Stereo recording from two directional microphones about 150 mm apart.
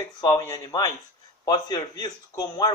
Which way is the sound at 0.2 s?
25° left (ahead or behind).